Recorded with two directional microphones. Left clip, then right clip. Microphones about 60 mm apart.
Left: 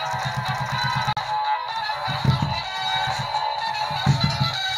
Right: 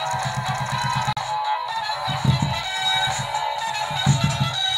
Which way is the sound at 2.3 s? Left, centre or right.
Right.